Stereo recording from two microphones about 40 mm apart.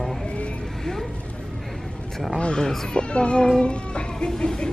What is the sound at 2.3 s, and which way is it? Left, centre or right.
Speech, centre.